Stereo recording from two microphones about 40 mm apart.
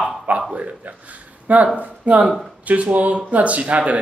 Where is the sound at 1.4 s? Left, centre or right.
Right.